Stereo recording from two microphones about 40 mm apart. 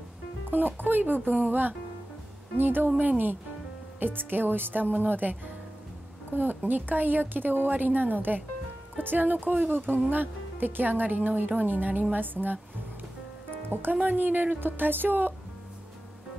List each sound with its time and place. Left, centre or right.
0.5 s a woman's voice: right
2.5 s speech: right
3.0 s a woman's voice: right
11.9 s a woman's voice: right
12.2 s a woman's voice: right
13.7 s speech: right
14.0 s a woman's voice: right
14.6 s speech: right